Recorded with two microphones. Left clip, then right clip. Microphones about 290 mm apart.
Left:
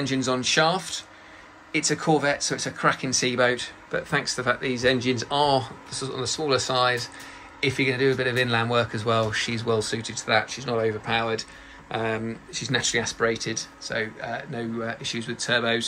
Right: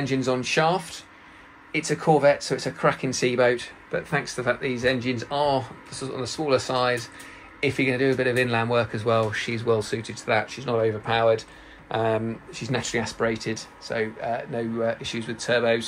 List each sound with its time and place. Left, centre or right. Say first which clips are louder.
0.0 s speech: even; centre